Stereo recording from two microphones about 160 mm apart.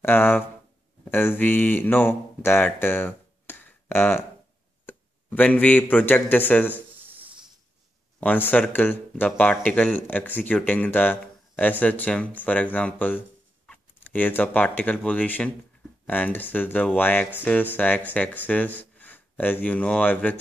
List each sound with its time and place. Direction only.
0.0 s speech: 10° left (ahead or behind)
8.2 s speech: 10° left (ahead or behind)